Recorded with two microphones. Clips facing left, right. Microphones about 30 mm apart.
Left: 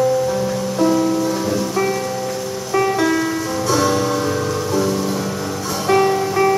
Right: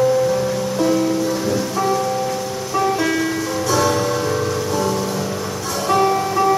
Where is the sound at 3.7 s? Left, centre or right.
Centre.